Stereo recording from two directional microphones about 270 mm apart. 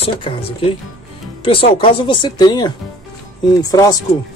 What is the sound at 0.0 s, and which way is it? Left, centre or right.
Speech, centre.